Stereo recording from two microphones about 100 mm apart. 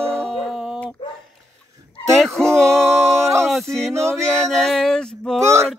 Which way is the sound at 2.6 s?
5° left (ahead or behind).